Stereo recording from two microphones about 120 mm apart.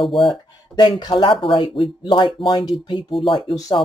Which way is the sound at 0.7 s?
35° left (ahead or behind).